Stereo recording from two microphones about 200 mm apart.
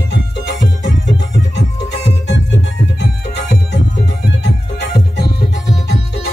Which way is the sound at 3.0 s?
60° left (ahead or behind).